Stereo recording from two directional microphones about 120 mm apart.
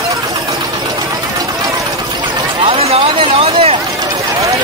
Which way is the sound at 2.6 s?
55° right (ahead or behind).